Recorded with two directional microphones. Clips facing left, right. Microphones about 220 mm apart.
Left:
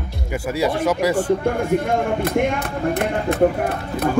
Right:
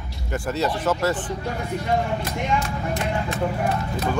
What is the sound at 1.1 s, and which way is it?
Speech, 50° left (ahead or behind).